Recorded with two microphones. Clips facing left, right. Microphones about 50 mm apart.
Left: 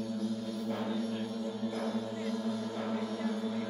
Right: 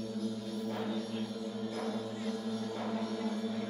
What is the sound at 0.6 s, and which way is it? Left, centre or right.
Music, centre.